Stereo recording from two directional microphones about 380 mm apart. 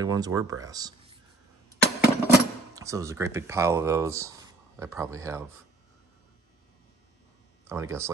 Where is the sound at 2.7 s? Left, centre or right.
Centre.